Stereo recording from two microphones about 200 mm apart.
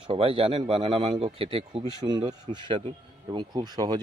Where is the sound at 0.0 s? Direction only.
25° right (ahead or behind).